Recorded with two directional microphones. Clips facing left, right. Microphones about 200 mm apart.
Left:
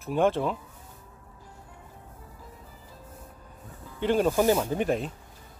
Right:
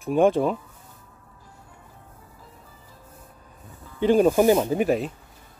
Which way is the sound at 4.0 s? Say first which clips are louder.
Right 6 dB; 15° right (ahead or behind).